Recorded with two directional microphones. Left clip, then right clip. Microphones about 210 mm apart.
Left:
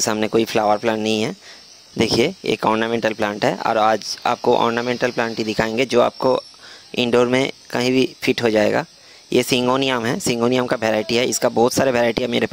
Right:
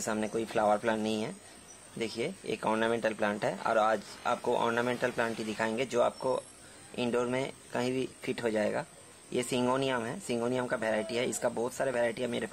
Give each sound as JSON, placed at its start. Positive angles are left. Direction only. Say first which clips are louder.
{"t": 0.0, "sound": "speech", "louder": "left 15 dB", "side_deg": 45}